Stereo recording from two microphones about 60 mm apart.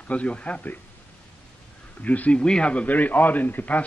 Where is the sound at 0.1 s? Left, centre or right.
Left.